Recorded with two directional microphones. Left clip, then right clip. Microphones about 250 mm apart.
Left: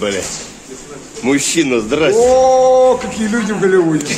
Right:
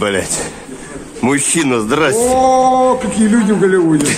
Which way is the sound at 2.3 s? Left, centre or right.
Centre.